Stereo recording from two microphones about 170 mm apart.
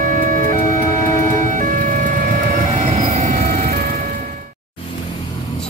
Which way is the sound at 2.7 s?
45° right (ahead or behind).